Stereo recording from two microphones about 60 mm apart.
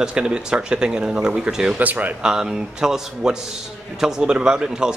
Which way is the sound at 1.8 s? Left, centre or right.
Right.